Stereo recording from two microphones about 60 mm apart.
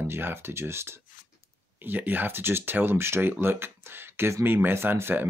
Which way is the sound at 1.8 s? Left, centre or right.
Right.